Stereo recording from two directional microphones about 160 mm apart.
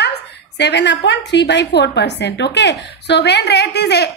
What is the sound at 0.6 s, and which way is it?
A woman's voice, 90° left.